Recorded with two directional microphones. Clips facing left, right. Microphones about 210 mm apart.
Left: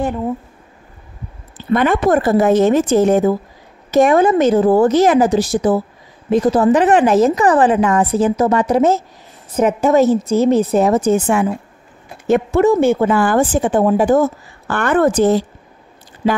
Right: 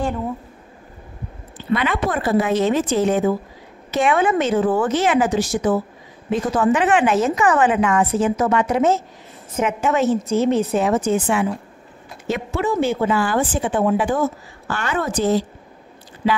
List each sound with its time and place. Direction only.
1.7 s a woman's voice: 50° left (ahead or behind)
14.7 s a woman's voice: 55° left (ahead or behind)